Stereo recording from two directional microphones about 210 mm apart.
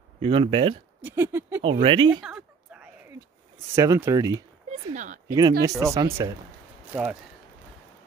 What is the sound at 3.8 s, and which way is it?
Speech, 15° right (ahead or behind).